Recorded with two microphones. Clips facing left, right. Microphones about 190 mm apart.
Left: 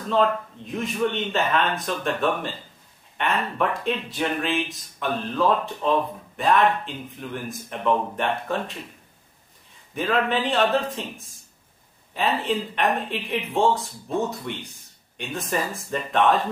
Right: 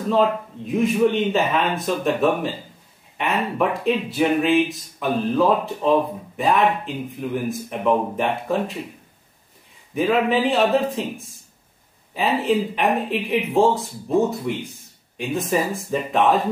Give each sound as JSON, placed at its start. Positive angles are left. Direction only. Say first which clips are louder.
{"t": 0.1, "sound": "speech", "louder": "right 2 dB", "side_deg": -5}
{"t": 9.9, "sound": "speech", "louder": "right 5 dB", "side_deg": -5}